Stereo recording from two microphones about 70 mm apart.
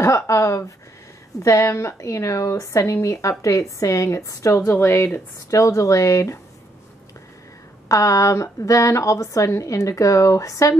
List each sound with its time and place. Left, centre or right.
0.0 s speech: left
7.9 s speech: left